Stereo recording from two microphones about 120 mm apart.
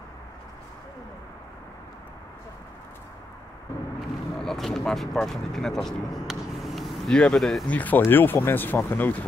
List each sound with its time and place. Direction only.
4.4 s speech: 5° left (ahead or behind)
7.7 s speech: 15° left (ahead or behind)